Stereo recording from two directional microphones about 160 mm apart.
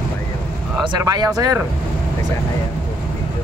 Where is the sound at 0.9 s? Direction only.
25° right (ahead or behind).